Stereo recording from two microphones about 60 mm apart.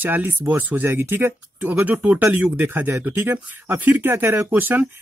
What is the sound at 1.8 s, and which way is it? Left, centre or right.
Speech, right.